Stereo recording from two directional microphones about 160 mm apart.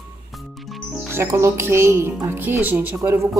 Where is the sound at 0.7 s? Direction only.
Centre (ahead or behind).